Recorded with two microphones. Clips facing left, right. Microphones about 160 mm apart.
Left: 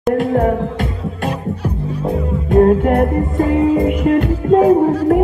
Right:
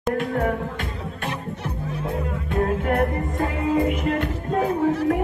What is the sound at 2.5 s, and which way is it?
Music, 45° left (ahead or behind).